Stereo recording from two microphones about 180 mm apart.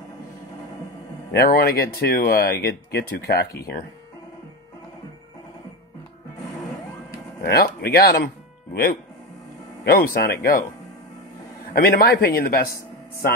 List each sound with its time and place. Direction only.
1.3 s speech: 60° left (ahead or behind)
7.4 s speech: 60° left (ahead or behind)
9.8 s speech: 55° left (ahead or behind)
11.7 s speech: 55° left (ahead or behind)